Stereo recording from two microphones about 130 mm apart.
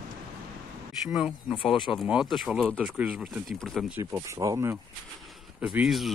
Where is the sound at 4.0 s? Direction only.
25° right (ahead or behind).